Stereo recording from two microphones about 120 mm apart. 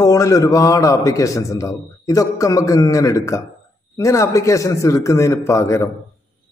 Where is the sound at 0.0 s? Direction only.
30° left (ahead or behind).